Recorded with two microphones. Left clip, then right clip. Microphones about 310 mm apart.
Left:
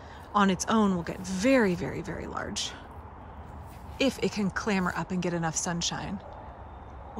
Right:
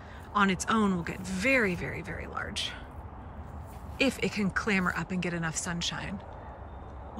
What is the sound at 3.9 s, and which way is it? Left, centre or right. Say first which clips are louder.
Speech: left 1 dB; centre.